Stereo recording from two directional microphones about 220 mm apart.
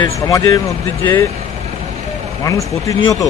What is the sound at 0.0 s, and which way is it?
Speech, 15° left (ahead or behind).